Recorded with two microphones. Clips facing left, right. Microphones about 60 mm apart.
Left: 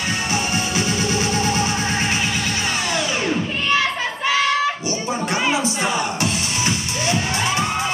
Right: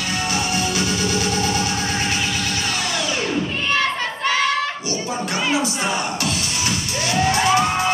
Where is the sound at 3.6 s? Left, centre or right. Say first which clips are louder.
Left 2 dB; centre.